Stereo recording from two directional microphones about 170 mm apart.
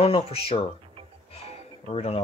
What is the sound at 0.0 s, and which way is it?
Speech, 35° left (ahead or behind).